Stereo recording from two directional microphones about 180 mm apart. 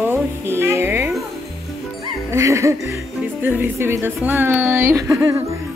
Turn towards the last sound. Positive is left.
turn(degrees=-10)  # may be behind; listen again after turning